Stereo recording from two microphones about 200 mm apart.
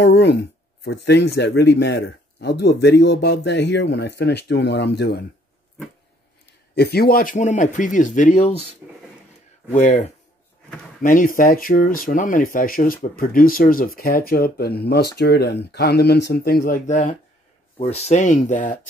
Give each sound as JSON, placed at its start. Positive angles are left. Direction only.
{"t": 0.0, "sound": "speech", "side_deg": 55}
{"t": 6.7, "sound": "speech", "side_deg": 55}
{"t": 8.8, "sound": "speech", "side_deg": -10}
{"t": 9.8, "sound": "speech", "side_deg": 35}